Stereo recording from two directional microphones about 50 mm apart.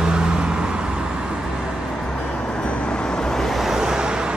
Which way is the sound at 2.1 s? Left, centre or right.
Centre.